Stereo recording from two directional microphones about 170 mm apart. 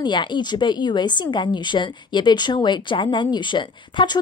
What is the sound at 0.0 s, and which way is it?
A woman's voice, 25° left (ahead or behind).